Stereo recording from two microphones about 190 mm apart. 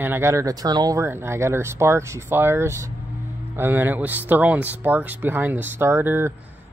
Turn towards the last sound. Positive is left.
turn(degrees=-10)  # may be behind; listen again after turning